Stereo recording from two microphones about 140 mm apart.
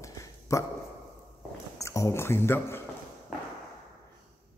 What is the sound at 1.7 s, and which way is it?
A man's voice, 20° left (ahead or behind).